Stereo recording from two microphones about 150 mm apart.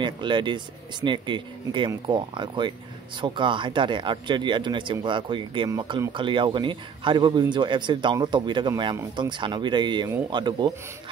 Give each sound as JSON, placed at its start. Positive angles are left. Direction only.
{"t": 0.0, "sound": "a man's voice", "side_deg": -30}